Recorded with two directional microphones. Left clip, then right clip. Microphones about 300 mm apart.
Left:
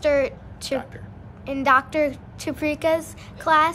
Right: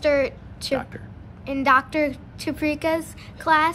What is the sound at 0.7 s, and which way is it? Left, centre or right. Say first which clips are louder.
Speech: right 1 dB; centre.